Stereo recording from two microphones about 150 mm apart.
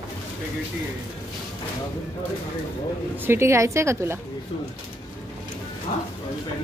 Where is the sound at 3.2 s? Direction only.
15° right (ahead or behind).